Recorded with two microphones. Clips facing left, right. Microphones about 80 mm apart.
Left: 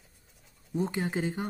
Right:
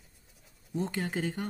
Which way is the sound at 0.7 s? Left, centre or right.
Centre.